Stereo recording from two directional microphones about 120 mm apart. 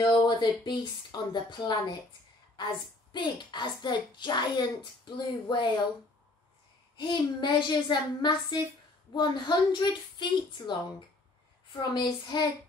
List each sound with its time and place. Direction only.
0.0 s a child's voice: 35° left (ahead or behind)
3.1 s a child's voice: 40° left (ahead or behind)
7.0 s a child's voice: 40° left (ahead or behind)